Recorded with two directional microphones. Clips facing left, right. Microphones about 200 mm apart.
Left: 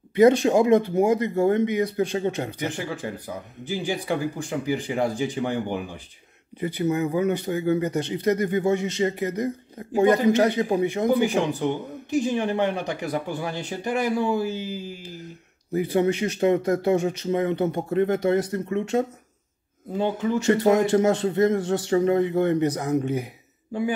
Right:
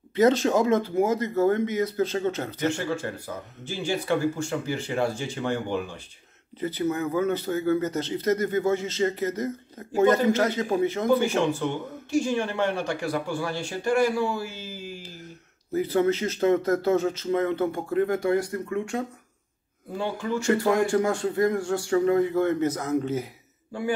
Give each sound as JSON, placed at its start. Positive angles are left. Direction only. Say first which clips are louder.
{"t": 0.1, "sound": "a man's voice", "louder": "left 4 dB", "side_deg": 15}